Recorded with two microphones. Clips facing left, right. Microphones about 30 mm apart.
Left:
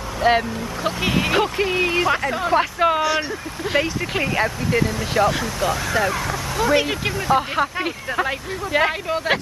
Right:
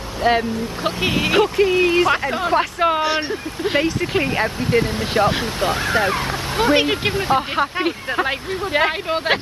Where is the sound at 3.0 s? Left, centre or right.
Right.